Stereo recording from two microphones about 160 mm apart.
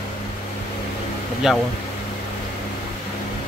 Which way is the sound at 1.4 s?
Centre (ahead or behind).